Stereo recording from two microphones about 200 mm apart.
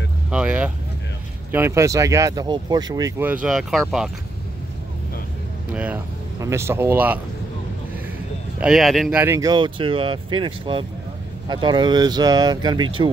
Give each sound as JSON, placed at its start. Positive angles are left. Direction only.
{"t": 0.3, "sound": "speech", "side_deg": -5}
{"t": 3.4, "sound": "speech", "side_deg": 0}
{"t": 5.7, "sound": "speech", "side_deg": -5}
{"t": 8.5, "sound": "speech", "side_deg": 0}
{"t": 9.2, "sound": "speech", "side_deg": -15}